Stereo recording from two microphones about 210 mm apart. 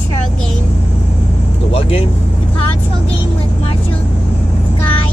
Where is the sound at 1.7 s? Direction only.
25° left (ahead or behind).